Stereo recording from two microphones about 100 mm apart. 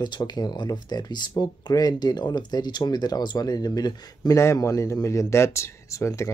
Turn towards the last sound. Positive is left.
turn(degrees=30)  # may be behind; listen again after turning